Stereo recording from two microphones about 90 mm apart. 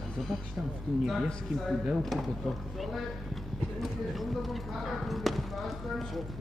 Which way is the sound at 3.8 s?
Centre (ahead or behind).